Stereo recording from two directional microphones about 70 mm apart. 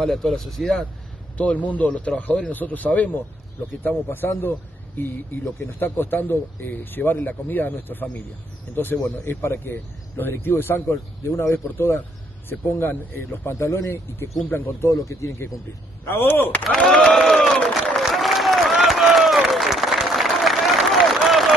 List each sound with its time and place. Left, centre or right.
0.0 s speech: centre
1.4 s speech: left
4.4 s speech: left
9.0 s a man's voice: left
16.6 s a sound: centre
18.0 s applause: centre